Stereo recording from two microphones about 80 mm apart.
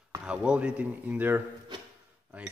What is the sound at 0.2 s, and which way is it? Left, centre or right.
Cutlery, centre.